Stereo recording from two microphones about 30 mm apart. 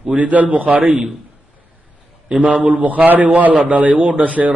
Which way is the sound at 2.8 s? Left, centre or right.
Right.